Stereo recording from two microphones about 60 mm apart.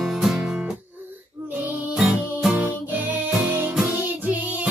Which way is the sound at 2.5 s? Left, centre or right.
Right.